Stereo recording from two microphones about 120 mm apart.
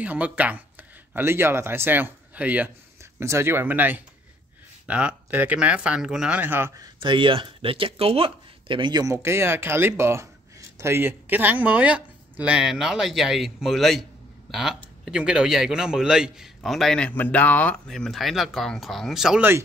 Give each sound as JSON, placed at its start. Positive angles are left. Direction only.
{"t": 0.0, "sound": "speech", "side_deg": -10}
{"t": 7.0, "sound": "speech", "side_deg": -45}
{"t": 9.1, "sound": "a man's voice", "side_deg": -20}